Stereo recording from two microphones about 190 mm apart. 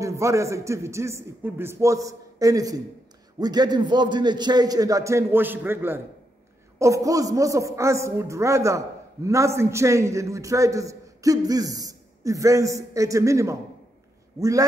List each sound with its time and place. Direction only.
0.0 s a man's voice: 15° right (ahead or behind)